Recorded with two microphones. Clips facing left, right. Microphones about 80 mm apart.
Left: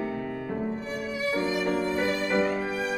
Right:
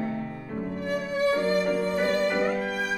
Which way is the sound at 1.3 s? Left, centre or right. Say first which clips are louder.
Right 2 dB; centre.